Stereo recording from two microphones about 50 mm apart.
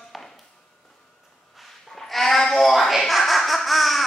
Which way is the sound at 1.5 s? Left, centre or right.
Centre.